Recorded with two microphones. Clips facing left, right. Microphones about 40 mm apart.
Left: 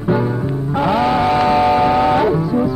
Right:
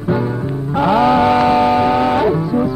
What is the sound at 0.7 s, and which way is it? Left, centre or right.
Music, right.